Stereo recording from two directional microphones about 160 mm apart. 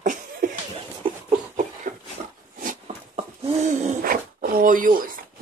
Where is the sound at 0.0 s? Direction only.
55° right (ahead or behind).